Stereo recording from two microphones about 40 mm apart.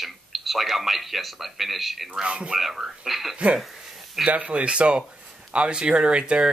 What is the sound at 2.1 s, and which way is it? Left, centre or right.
Speech, right.